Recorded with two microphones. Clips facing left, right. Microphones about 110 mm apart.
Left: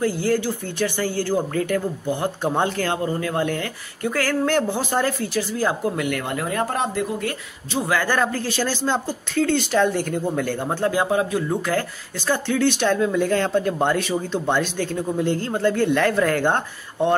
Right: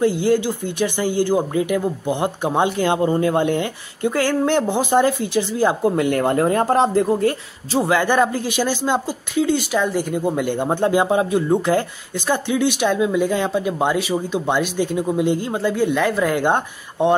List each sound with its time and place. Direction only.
0.0 s speech: 20° right (ahead or behind)